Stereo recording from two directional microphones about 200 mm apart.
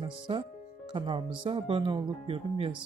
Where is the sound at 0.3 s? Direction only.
30° right (ahead or behind).